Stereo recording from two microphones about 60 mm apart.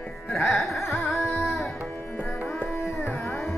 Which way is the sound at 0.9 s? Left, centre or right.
Centre.